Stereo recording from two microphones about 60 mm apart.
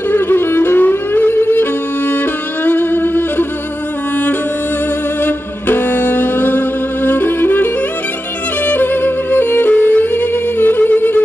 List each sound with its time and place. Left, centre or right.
0.1 s music: left
2.6 s violin: left
5.2 s music: left